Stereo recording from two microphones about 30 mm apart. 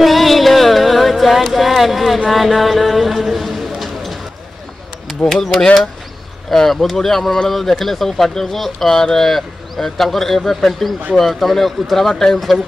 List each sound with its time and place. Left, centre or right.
0.0 s music: centre
1.5 s speech: centre
2.2 s a sound: centre
5.2 s speech: left
6.5 s speech: centre